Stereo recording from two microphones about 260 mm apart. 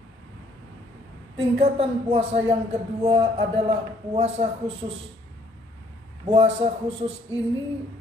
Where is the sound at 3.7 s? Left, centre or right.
Right.